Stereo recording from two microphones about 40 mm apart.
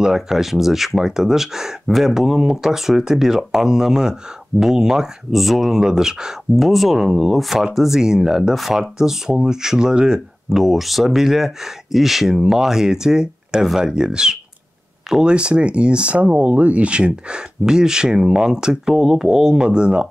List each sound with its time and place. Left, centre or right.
0.0 s speech: centre
6.5 s speech: centre
8.5 s speech: centre
8.8 s speech: centre
10.5 s speech: centre; by 20.1 s right